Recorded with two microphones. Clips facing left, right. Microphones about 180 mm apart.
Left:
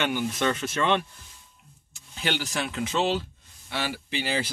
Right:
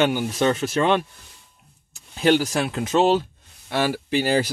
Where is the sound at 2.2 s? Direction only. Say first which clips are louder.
Right 10 dB; 45° right (ahead or behind).